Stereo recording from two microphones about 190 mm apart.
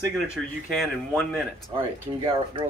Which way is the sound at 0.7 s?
Centre (ahead or behind).